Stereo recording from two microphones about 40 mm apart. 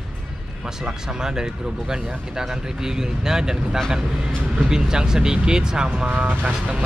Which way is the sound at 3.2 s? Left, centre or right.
Centre.